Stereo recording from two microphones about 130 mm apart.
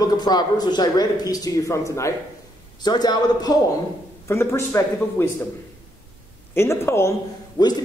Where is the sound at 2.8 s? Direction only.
35° left (ahead or behind).